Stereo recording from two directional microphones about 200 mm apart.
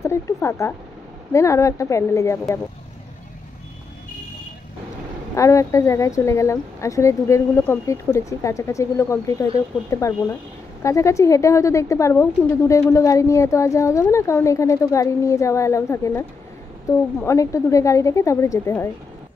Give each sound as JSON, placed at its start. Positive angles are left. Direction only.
{"t": 0.0, "sound": "a sound", "side_deg": 15}
{"t": 1.3, "sound": "a woman's voice", "side_deg": 15}
{"t": 5.3, "sound": "a woman's voice", "side_deg": 15}